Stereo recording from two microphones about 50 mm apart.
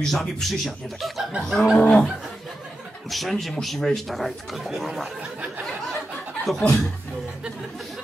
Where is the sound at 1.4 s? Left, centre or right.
Centre.